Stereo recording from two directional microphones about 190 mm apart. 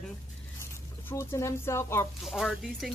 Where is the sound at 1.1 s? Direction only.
10° left (ahead or behind).